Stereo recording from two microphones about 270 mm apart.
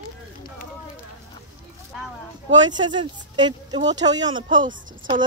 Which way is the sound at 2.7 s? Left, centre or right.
Centre.